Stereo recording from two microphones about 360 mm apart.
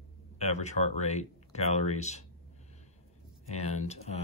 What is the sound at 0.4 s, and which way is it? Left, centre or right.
Speech, centre.